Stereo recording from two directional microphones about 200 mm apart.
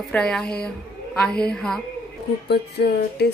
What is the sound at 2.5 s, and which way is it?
Speech, 55° left (ahead or behind).